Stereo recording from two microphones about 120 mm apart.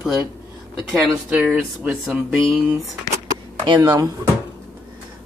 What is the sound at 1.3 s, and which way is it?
Speech, 15° right (ahead or behind).